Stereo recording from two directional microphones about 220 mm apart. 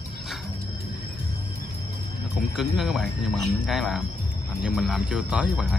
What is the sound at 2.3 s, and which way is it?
Speech, centre (ahead or behind).